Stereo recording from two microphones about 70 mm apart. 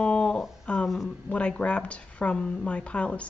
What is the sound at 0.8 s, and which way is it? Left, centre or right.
Speech, centre.